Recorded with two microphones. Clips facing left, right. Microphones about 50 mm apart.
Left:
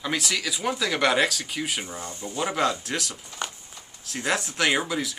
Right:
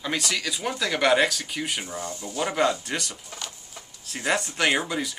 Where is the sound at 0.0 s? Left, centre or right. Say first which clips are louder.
Even; centre.